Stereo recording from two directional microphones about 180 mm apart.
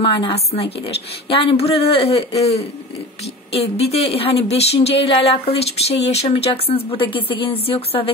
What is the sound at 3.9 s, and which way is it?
Speech, 35° left (ahead or behind).